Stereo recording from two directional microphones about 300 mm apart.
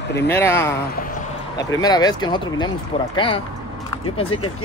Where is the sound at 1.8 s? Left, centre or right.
Centre.